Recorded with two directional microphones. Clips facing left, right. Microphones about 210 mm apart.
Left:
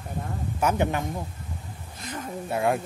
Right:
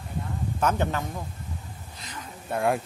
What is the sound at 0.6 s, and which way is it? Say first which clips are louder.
Speech: left 2 dB; 10° left (ahead or behind).